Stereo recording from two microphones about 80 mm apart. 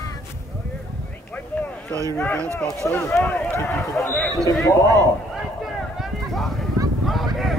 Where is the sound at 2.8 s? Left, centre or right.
Left.